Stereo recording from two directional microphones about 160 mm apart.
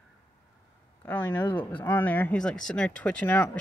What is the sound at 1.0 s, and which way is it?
Speech, 10° left (ahead or behind).